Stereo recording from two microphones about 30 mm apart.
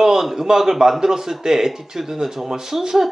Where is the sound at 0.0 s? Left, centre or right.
Centre.